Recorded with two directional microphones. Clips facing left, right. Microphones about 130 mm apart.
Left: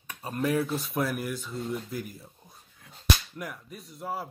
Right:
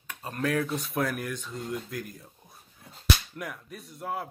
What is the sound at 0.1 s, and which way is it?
Speech, 10° left (ahead or behind).